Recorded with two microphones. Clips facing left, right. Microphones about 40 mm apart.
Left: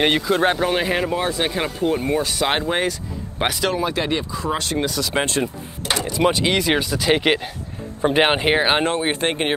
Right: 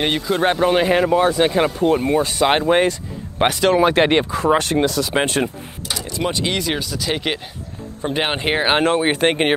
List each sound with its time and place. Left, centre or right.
0.0 s speech: centre
0.4 s speech: centre
3.4 s speech: right
3.8 s speech: right
5.2 s speech: right
6.0 s speech: centre
8.5 s speech: centre
8.9 s speech: centre